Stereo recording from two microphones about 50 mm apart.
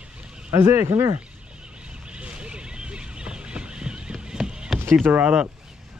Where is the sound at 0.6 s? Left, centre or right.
Right.